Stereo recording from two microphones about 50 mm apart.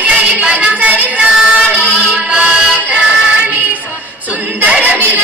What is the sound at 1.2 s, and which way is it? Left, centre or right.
Music, centre.